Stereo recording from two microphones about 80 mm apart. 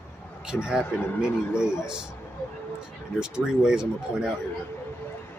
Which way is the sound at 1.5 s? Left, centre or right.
Left.